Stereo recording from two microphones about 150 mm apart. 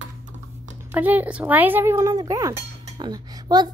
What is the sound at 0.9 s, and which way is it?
A woman's voice, 10° right (ahead or behind).